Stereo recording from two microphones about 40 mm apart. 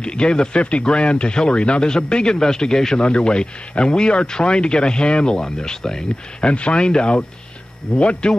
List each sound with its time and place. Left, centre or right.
0.0 s speech: left
3.0 s speech: left
6.4 s a man's voice: left